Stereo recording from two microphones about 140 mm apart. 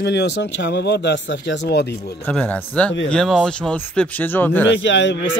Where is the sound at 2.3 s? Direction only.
10° left (ahead or behind).